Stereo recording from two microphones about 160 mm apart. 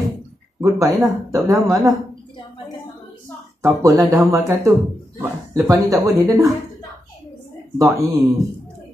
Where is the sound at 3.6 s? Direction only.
20° right (ahead or behind).